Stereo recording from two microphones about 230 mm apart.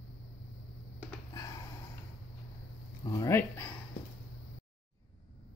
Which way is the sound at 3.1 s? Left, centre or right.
Centre.